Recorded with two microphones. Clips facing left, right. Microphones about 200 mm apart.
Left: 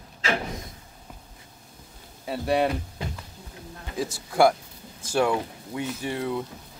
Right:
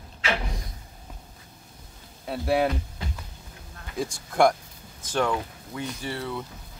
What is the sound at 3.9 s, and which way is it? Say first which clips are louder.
Speech: left 1 dB; 5° left (ahead or behind).